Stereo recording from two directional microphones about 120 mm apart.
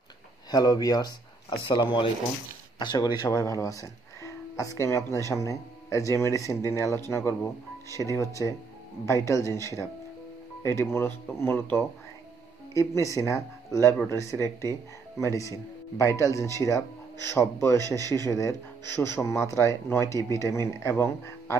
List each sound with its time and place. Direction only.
0.5 s speech: 30° left (ahead or behind)
12.7 s speech: 25° left (ahead or behind)